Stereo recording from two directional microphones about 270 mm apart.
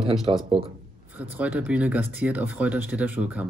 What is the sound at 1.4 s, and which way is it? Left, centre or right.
Speech, centre.